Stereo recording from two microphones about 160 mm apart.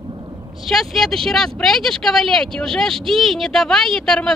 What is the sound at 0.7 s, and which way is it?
Speech, centre (ahead or behind).